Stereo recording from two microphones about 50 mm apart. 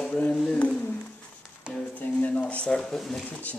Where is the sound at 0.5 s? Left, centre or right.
Left.